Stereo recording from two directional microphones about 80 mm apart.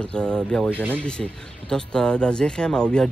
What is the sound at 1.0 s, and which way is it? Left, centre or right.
Speech, centre.